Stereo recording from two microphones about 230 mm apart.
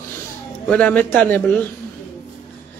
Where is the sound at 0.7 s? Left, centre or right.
Centre.